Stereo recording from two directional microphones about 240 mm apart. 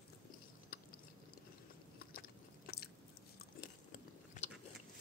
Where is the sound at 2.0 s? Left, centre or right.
Left.